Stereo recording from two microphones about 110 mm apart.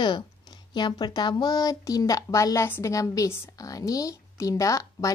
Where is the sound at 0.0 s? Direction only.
45° left (ahead or behind).